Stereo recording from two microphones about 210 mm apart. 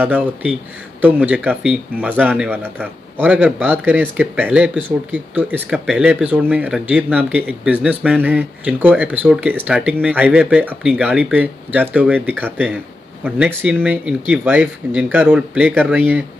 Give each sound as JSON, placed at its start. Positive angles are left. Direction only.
{"t": 0.0, "sound": "speech", "side_deg": -5}